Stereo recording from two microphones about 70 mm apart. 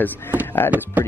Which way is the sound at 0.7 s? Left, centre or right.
Right.